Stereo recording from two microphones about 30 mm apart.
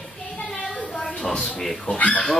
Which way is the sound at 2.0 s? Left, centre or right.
Left.